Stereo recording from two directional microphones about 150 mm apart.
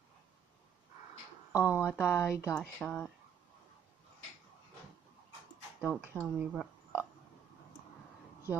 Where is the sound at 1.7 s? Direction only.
15° left (ahead or behind).